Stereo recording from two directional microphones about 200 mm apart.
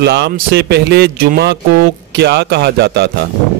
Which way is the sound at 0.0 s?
55° right (ahead or behind).